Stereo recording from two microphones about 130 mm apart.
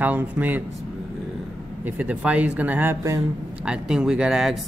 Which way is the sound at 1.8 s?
10° right (ahead or behind).